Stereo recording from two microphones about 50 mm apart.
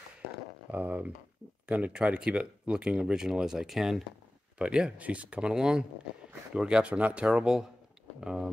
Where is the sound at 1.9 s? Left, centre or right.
Centre.